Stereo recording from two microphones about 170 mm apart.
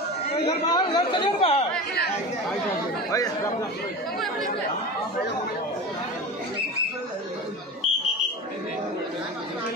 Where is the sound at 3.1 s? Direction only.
20° left (ahead or behind).